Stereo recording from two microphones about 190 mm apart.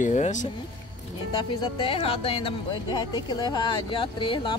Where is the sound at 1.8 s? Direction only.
30° left (ahead or behind).